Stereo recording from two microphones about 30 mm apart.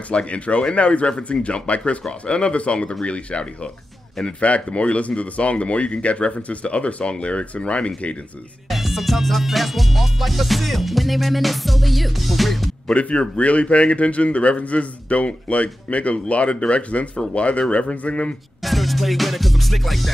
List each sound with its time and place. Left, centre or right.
0.1 s a man's voice: left
4.4 s a man's voice: left
8.6 s music: centre
13.4 s a man's voice: left
18.6 s music: centre